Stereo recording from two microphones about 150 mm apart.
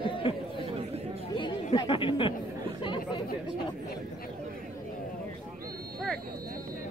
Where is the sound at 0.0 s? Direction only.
35° left (ahead or behind).